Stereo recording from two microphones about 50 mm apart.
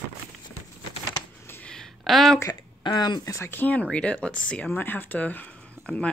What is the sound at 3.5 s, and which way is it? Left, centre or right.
Speech, left.